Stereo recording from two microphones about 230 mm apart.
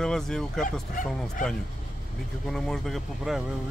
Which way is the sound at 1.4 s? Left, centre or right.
Left.